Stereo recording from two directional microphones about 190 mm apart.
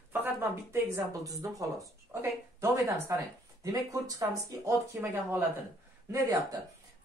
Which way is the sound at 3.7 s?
20° right (ahead or behind).